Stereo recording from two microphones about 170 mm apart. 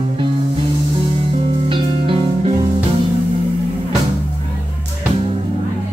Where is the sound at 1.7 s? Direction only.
30° right (ahead or behind).